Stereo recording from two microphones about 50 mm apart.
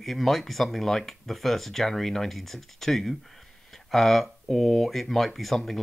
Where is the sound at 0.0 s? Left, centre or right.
Centre.